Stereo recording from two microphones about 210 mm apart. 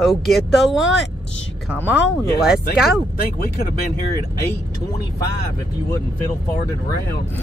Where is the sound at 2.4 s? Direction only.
5° right (ahead or behind).